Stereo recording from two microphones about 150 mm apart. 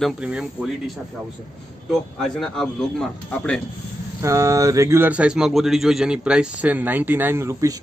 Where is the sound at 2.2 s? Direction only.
Centre (ahead or behind).